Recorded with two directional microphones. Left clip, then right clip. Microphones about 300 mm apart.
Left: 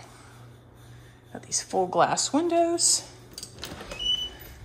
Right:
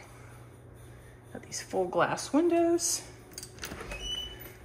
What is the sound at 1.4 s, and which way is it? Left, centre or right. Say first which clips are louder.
Speech: left 5 dB; centre.